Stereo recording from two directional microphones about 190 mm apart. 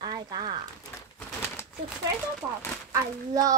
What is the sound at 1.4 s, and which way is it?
Crumpling, 10° left (ahead or behind).